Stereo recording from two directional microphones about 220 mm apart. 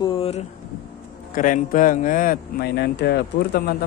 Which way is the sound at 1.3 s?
35° left (ahead or behind).